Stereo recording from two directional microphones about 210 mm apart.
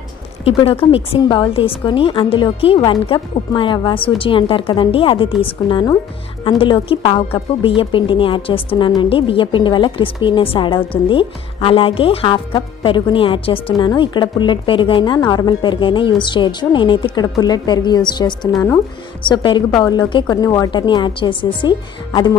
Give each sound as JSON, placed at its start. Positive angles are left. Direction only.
{"t": 0.5, "sound": "speech", "side_deg": 25}